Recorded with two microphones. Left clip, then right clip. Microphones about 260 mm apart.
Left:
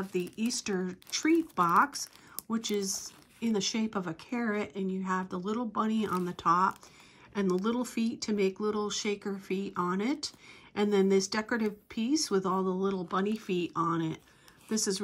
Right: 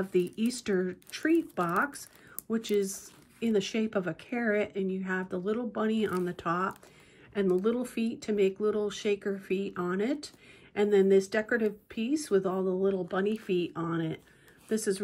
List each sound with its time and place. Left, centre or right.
0.1 s speech: centre